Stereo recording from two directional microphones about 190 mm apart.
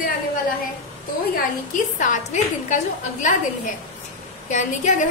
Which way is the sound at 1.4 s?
40° left (ahead or behind).